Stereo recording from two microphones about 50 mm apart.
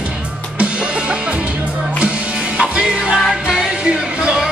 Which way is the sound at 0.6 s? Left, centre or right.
Right.